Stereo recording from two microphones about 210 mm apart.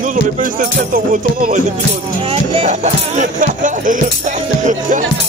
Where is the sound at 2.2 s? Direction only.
30° right (ahead or behind).